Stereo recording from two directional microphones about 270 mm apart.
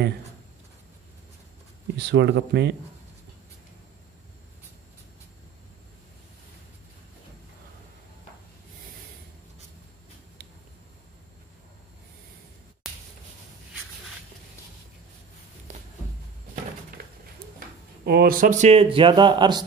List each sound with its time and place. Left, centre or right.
2.0 s speech: right
18.0 s speech: right; by 19.6 s centre